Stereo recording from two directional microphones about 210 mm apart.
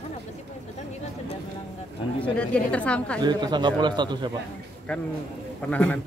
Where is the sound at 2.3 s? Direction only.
5° left (ahead or behind).